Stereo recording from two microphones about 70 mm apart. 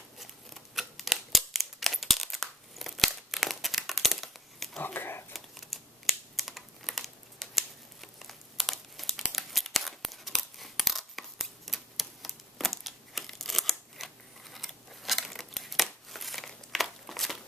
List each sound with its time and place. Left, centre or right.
0.2 s scissors: centre
4.7 s a sound: left
5.3 s computer keyboard: centre